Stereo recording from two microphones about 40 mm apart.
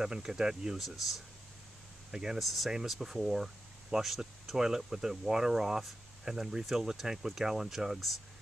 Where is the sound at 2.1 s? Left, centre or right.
Centre.